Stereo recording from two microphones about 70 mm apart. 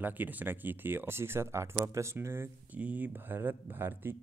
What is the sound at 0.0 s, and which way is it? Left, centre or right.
Speech, right.